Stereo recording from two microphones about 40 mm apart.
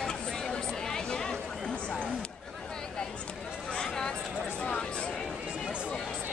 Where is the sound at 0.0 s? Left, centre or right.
Centre.